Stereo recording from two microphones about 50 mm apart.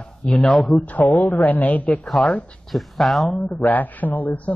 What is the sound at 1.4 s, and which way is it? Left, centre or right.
Speech, left.